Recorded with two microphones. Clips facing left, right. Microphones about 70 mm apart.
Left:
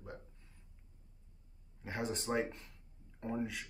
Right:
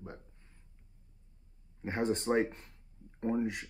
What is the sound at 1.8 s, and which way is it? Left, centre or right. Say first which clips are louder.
Speech: right 7 dB; right.